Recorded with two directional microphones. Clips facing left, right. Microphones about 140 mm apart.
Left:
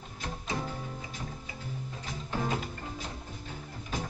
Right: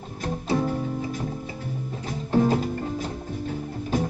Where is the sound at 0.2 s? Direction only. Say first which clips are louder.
Right 11 dB; 40° right (ahead or behind).